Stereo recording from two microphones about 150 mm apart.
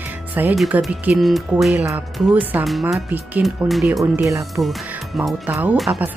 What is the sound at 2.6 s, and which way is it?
Speech, centre (ahead or behind).